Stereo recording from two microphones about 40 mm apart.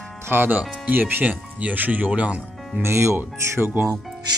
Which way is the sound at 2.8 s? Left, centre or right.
Right.